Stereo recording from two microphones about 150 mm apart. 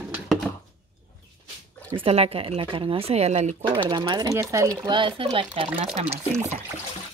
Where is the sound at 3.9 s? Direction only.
30° right (ahead or behind).